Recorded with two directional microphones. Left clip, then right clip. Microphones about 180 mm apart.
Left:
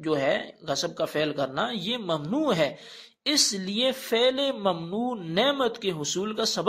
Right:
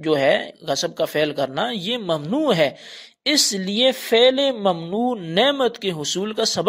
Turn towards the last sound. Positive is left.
turn(degrees=-45)  # may be behind; listen again after turning